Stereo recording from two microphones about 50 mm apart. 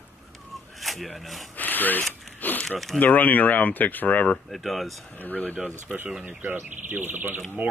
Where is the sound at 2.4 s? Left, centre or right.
Left.